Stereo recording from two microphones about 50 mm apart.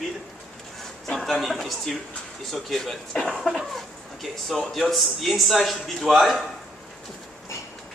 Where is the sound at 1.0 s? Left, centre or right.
Centre.